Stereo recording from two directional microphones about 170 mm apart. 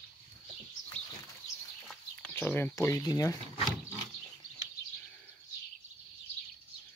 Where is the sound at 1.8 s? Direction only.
10° left (ahead or behind).